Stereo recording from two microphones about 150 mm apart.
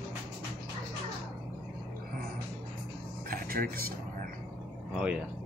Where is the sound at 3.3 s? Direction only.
75° right (ahead or behind).